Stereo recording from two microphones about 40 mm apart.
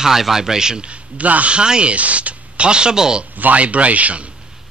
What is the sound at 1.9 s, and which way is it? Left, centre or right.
Speech, right.